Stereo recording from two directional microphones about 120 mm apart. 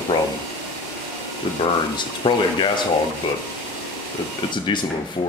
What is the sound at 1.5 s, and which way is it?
Speech, 45° left (ahead or behind).